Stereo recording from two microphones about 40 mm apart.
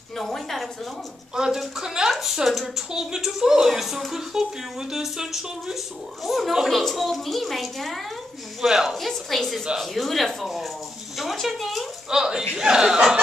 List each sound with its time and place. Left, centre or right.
0.2 s speech: centre
1.3 s a child's voice: centre
8.5 s speech: centre
8.9 s a child's voice: centre
12.1 s speech: centre